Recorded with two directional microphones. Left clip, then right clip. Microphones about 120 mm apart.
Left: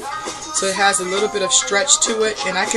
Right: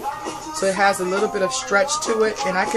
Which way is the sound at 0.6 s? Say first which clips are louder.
Left 1 dB; 15° left (ahead or behind).